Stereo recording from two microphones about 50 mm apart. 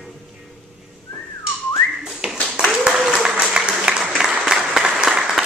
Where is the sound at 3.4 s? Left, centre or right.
Centre.